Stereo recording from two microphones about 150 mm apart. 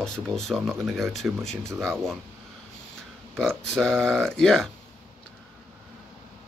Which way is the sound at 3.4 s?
5° left (ahead or behind).